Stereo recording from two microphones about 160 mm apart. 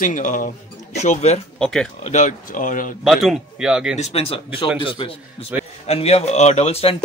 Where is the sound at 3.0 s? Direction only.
Centre (ahead or behind).